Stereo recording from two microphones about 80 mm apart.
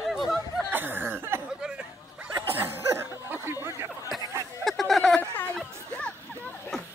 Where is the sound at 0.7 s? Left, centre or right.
Right.